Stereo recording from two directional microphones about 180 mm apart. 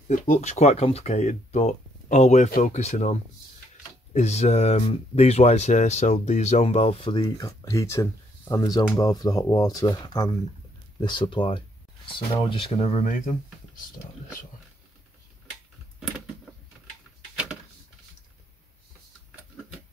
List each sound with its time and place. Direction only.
0.1 s speech: 40° left (ahead or behind)